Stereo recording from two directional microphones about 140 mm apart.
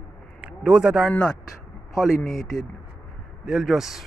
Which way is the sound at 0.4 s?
5° right (ahead or behind).